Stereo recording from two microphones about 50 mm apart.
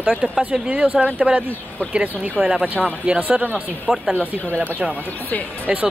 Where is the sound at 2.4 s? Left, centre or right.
Centre.